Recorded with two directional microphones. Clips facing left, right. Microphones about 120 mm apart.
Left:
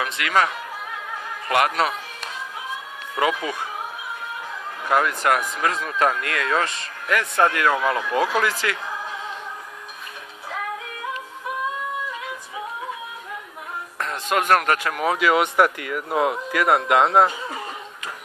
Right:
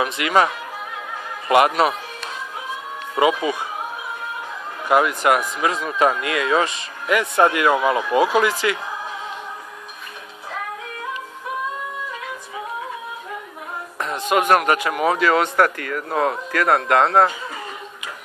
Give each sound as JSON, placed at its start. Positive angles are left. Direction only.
{"t": 0.0, "sound": "speech", "side_deg": -20}
{"t": 1.5, "sound": "speech", "side_deg": -15}
{"t": 3.2, "sound": "speech", "side_deg": -10}
{"t": 4.8, "sound": "speech", "side_deg": -10}
{"t": 13.9, "sound": "speech", "side_deg": -5}
{"t": 15.1, "sound": "speech", "side_deg": 10}